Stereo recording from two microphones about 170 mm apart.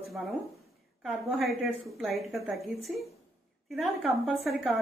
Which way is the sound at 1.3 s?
Centre (ahead or behind).